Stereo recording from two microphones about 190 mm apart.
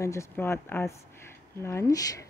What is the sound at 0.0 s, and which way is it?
Speech, 15° left (ahead or behind).